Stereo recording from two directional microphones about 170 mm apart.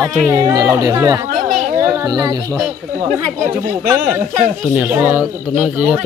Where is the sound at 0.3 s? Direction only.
20° right (ahead or behind).